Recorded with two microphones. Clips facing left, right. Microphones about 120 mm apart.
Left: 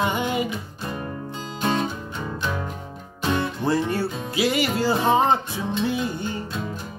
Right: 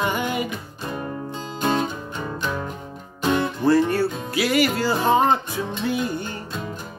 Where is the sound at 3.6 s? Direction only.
25° left (ahead or behind).